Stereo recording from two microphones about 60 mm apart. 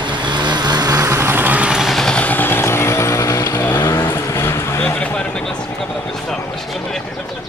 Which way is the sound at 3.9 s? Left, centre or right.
Left.